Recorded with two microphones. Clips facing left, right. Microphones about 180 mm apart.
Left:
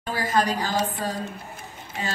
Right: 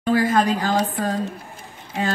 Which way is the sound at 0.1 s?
50° right (ahead or behind).